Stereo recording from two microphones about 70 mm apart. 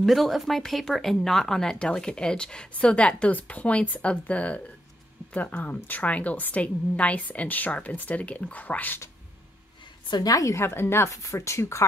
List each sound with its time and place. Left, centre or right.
0.0 s a woman's voice: centre; by 9.0 s left
10.0 s a woman's voice: left
10.5 s speech: left
11.2 s speech: left